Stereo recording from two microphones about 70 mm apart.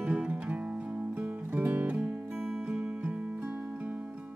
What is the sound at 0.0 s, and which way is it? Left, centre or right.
Music, centre.